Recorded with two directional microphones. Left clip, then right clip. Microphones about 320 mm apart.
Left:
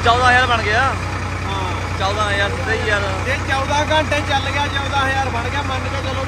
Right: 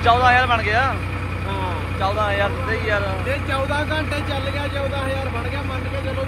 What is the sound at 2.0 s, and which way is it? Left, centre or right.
Speech, centre.